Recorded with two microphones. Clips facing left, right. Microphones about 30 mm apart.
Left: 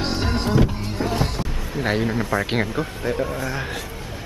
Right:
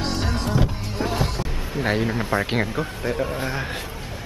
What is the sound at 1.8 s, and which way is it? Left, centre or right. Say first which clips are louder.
A man's voice: left 1 dB; centre.